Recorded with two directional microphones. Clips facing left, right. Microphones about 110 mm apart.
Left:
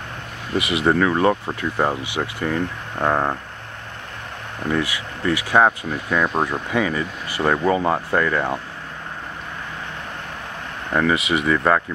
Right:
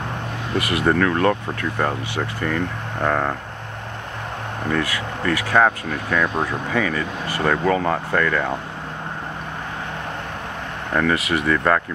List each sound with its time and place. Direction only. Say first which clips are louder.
0.6 s speech: left 1 dB; 5° left (ahead or behind)
4.7 s speech: right 1 dB; 15° left (ahead or behind)
10.9 s speech: left 1 dB; 5° left (ahead or behind)